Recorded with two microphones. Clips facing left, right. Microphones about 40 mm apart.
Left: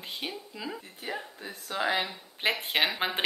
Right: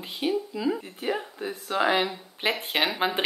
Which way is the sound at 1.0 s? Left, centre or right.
Right.